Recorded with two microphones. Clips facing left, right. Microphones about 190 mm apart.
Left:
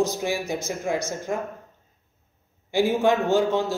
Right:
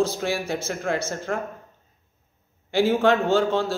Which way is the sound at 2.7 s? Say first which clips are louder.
Right 1 dB; 15° left (ahead or behind).